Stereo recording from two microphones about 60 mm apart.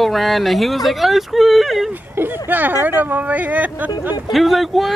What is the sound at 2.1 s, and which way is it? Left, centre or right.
Speech, right.